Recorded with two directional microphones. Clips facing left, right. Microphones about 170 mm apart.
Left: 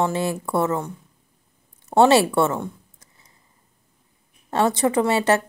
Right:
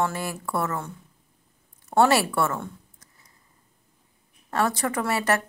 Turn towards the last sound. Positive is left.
turn(degrees=25)  # may be behind; listen again after turning